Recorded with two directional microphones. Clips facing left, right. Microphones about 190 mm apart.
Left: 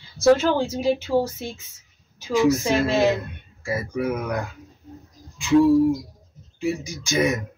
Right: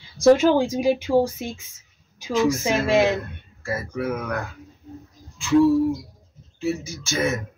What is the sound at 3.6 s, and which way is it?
Speech, 15° left (ahead or behind).